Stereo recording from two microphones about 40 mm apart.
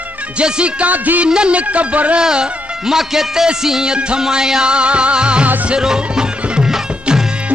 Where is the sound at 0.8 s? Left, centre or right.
Right.